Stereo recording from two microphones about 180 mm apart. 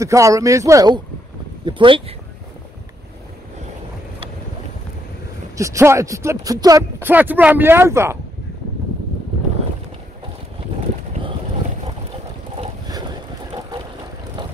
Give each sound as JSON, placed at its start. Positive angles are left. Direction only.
{"t": 0.0, "sound": "speech", "side_deg": -15}
{"t": 5.6, "sound": "speech", "side_deg": -15}
{"t": 12.5, "sound": "boat", "side_deg": -20}